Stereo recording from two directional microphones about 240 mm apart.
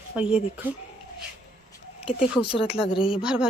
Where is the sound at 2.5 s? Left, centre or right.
Left.